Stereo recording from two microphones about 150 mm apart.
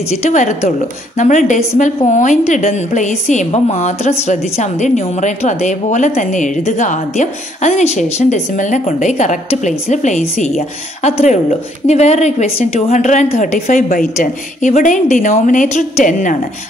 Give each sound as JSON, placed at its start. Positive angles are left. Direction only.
{"t": 0.1, "sound": "a woman's voice", "side_deg": 50}
{"t": 14.2, "sound": "a woman's voice", "side_deg": 55}